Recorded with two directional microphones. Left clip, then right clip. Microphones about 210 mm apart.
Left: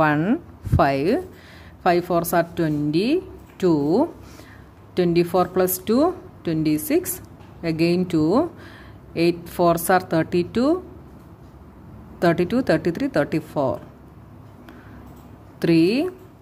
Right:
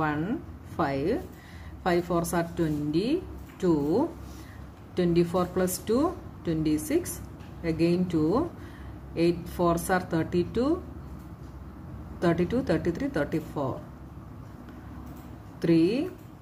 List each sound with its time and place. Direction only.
0.0 s a woman's voice: 45° left (ahead or behind)
12.2 s a woman's voice: 40° left (ahead or behind)
15.6 s speech: 45° left (ahead or behind)